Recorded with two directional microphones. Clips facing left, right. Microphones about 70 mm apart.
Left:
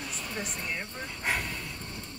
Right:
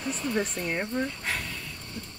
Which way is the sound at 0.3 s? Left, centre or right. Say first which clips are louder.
Right 7 dB; right.